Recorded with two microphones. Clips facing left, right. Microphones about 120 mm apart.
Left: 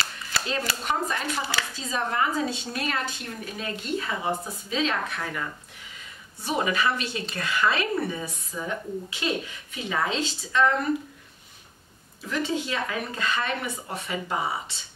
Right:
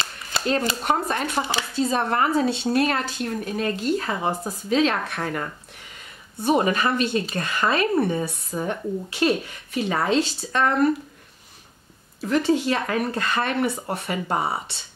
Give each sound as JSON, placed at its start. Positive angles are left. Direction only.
{"t": 0.3, "sound": "a sound", "side_deg": -25}
{"t": 0.8, "sound": "speech", "side_deg": -50}
{"t": 2.7, "sound": "speech", "side_deg": -45}
{"t": 8.5, "sound": "speech", "side_deg": -55}
{"t": 12.2, "sound": "speech", "side_deg": -60}